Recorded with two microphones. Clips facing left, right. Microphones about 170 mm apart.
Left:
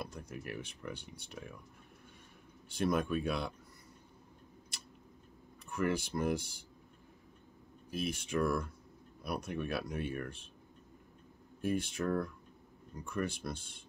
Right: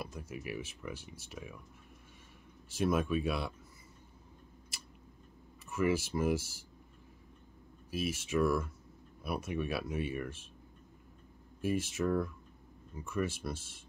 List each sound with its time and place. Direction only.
0.0 s speech: 5° right (ahead or behind)
2.7 s speech: 5° right (ahead or behind)
5.7 s speech: 5° right (ahead or behind)
7.9 s speech: 5° right (ahead or behind)
11.6 s speech: 5° right (ahead or behind)